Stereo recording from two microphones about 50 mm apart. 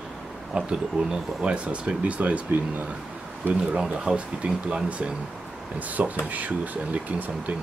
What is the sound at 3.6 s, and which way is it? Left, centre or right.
Speech, centre.